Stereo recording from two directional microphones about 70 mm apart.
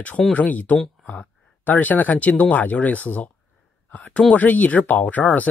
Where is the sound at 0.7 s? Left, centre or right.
Centre.